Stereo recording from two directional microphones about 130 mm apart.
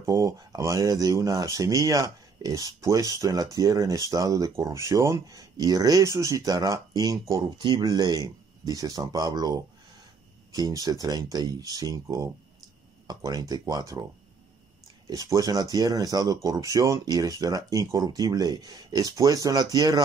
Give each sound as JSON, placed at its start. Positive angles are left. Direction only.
{"t": 0.0, "sound": "speech", "side_deg": -25}
{"t": 15.0, "sound": "speech", "side_deg": -30}